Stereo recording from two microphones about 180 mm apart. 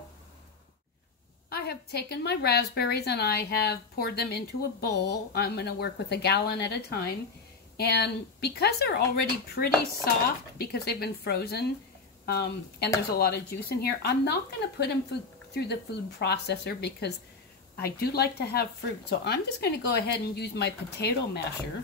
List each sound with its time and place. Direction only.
1.5 s a woman's voice: 65° left (ahead or behind)